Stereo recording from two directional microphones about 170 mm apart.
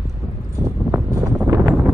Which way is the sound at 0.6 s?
20° right (ahead or behind).